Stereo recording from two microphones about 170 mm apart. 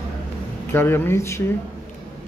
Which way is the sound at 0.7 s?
15° left (ahead or behind).